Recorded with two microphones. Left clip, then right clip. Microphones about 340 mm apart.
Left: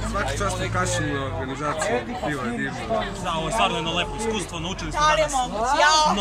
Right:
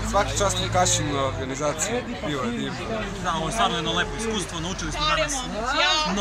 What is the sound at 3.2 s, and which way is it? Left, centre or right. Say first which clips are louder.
Speech: right 1 dB; centre.